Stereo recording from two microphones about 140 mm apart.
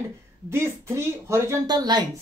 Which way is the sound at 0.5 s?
20° right (ahead or behind).